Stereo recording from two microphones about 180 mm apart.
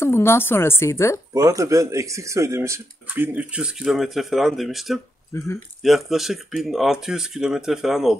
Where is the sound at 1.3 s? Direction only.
15° right (ahead or behind).